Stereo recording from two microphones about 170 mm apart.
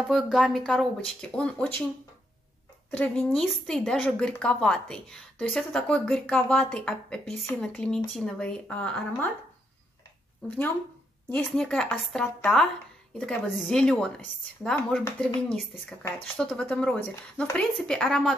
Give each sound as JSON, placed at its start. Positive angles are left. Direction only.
{"t": 0.1, "sound": "a woman's voice", "side_deg": 0}
{"t": 3.0, "sound": "a woman's voice", "side_deg": 5}
{"t": 11.2, "sound": "a woman's voice", "side_deg": 5}